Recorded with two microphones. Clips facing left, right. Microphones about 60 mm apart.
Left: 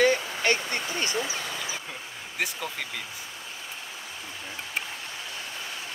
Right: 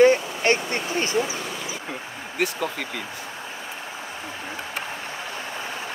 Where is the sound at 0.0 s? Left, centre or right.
Right.